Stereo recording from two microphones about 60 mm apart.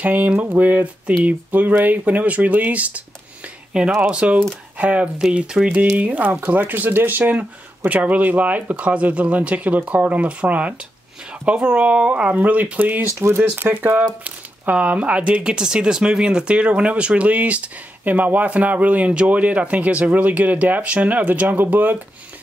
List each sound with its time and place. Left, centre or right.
0.0 s a sound: right
0.5 s speech: right
3.7 s speech: centre; by 21.9 s right